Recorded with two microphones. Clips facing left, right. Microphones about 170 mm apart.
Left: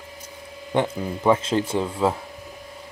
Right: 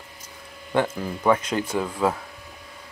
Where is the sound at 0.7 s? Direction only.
20° left (ahead or behind).